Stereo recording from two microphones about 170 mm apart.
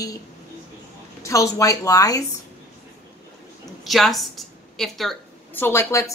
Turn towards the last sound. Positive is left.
turn(degrees=15)  # may be behind; listen again after turning